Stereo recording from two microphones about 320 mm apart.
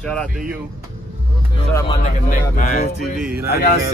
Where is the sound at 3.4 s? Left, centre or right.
Left.